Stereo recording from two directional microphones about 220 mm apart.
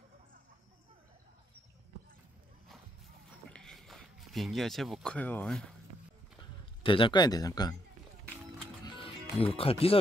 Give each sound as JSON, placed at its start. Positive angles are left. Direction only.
{"t": 3.4, "sound": "a sound", "side_deg": 5}
{"t": 6.8, "sound": "speech", "side_deg": 25}
{"t": 8.8, "sound": "music", "side_deg": 25}